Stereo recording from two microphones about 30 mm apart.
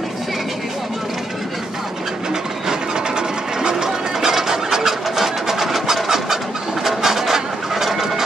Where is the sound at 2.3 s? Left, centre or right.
Right.